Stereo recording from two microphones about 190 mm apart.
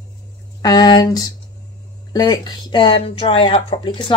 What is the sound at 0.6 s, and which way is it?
Speech, 20° left (ahead or behind).